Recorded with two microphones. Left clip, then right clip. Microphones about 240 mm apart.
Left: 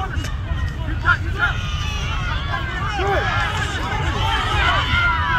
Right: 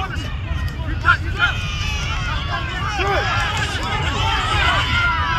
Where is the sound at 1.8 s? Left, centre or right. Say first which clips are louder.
Right 2 dB; right.